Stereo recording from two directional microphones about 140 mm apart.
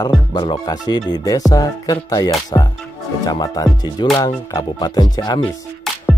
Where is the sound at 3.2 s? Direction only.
25° left (ahead or behind).